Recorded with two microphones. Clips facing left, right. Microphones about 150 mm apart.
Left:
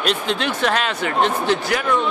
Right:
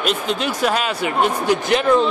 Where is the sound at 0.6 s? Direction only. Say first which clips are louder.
Right 1 dB; 10° right (ahead or behind).